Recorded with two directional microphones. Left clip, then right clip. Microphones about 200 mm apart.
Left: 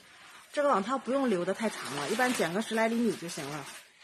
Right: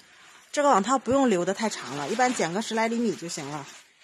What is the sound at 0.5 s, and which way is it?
Speech, 50° right (ahead or behind).